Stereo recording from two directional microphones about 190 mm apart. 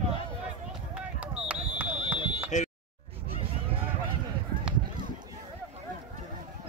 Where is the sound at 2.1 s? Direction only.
25° left (ahead or behind).